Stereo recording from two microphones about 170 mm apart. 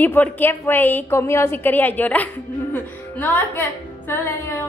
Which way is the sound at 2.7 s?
10° left (ahead or behind).